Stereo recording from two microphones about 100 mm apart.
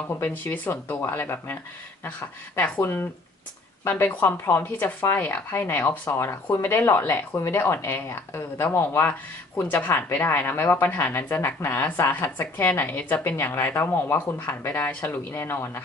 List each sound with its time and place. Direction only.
0.2 s speech: 20° left (ahead or behind)